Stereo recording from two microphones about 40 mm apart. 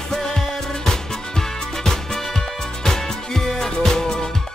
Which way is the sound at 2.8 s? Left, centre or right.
Centre.